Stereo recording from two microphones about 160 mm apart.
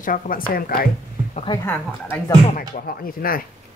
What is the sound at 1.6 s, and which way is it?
Speech, 10° left (ahead or behind).